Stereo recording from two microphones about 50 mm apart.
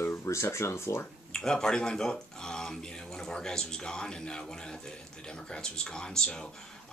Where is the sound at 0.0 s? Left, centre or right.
Left.